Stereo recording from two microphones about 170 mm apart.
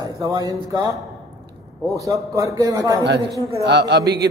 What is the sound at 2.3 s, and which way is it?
Speech, 20° right (ahead or behind).